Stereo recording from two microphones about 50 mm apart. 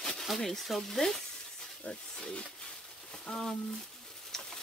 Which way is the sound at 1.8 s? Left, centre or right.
Left.